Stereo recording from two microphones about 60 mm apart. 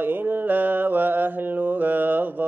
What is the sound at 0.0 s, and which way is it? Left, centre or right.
Mantra, right.